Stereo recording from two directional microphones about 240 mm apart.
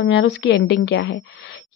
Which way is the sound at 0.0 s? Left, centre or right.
Left.